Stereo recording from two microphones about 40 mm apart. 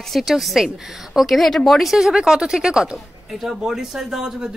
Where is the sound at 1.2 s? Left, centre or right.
Centre.